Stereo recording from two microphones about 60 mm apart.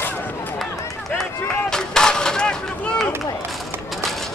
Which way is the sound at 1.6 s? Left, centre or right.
Centre.